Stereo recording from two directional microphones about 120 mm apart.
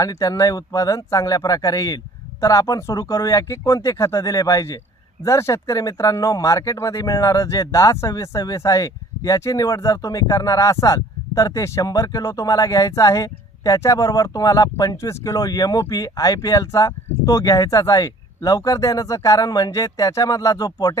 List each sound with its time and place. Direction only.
0.0 s speech: 30° left (ahead or behind)